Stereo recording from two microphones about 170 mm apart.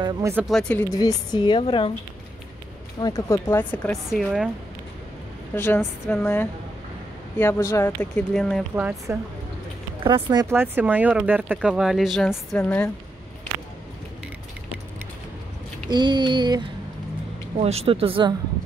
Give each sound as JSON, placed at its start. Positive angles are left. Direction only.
{"t": 0.0, "sound": "speech", "side_deg": -15}
{"t": 0.5, "sound": "speech", "side_deg": 5}
{"t": 0.9, "sound": "speech", "side_deg": 25}
{"t": 3.0, "sound": "speech", "side_deg": 15}
{"t": 5.5, "sound": "speech", "side_deg": 15}
{"t": 8.3, "sound": "speech", "side_deg": 0}
{"t": 10.0, "sound": "a sound", "side_deg": -25}
{"t": 10.4, "sound": "speech", "side_deg": -15}
{"t": 15.9, "sound": "a sound", "side_deg": -25}
{"t": 17.6, "sound": "speech", "side_deg": -35}